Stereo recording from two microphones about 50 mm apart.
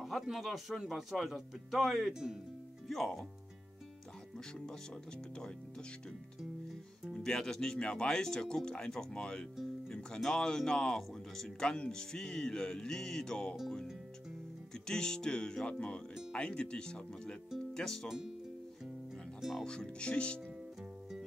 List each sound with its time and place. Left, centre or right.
0.0 s speech: centre
5.3 s speech: centre
14.7 s speech: centre
18.0 s speech: centre
19.6 s speech: centre